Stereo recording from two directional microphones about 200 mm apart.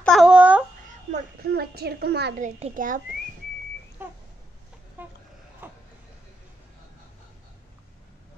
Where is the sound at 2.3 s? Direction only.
35° right (ahead or behind).